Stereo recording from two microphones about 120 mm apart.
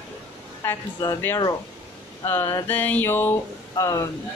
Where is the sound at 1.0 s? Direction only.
35° left (ahead or behind).